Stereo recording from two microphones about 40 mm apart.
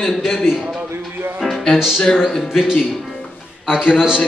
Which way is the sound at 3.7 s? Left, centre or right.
Right.